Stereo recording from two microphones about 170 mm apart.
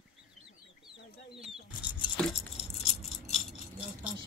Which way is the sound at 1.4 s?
5° right (ahead or behind).